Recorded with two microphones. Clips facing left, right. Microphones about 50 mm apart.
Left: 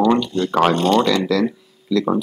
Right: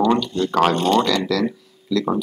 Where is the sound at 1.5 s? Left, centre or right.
Centre.